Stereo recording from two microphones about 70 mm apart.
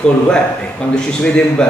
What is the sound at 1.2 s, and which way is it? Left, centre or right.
Speech, centre.